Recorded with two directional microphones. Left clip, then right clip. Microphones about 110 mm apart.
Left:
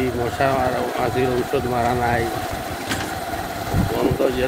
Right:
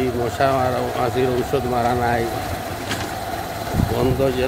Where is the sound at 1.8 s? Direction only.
40° right (ahead or behind).